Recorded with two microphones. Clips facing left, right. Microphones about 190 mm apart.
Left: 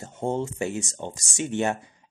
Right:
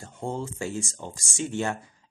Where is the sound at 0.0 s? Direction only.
20° left (ahead or behind).